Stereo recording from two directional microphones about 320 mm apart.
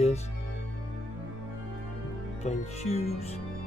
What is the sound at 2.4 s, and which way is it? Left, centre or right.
Speech, centre.